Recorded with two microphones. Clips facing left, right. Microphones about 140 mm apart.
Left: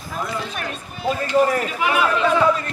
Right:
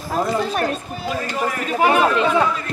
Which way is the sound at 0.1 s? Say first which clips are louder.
Right 7 dB; 40° right (ahead or behind).